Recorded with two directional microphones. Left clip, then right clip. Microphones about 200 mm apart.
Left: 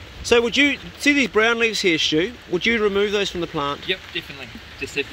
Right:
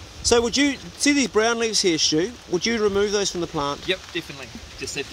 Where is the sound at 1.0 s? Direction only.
10° right (ahead or behind).